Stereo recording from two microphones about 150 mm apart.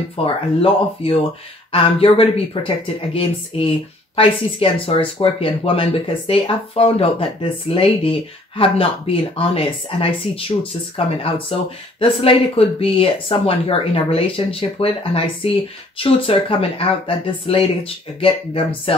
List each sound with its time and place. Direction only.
0.2 s speech: 40° left (ahead or behind)